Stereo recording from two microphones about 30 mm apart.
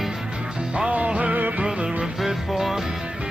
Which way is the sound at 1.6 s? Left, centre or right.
Right.